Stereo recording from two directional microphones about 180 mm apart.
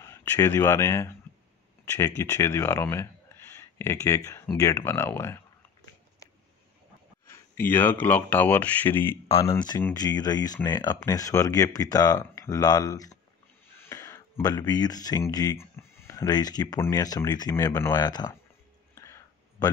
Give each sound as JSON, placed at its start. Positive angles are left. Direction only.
{"t": 0.0, "sound": "speech", "side_deg": 15}
{"t": 7.2, "sound": "speech", "side_deg": 10}
{"t": 18.9, "sound": "a sound", "side_deg": 15}